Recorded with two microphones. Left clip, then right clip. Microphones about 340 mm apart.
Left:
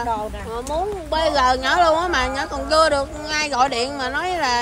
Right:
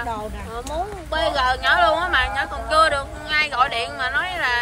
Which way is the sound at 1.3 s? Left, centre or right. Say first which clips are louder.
Left 1 dB; centre.